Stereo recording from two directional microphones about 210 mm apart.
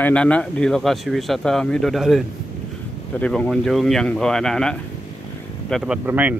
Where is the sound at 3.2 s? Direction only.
5° left (ahead or behind).